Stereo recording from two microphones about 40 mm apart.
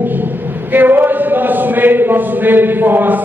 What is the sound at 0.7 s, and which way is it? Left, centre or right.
A man's voice, right.